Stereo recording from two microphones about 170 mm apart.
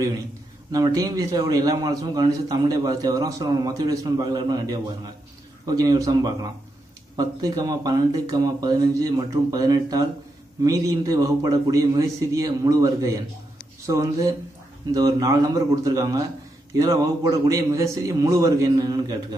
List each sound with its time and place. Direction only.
0.7 s a man's voice: 20° right (ahead or behind)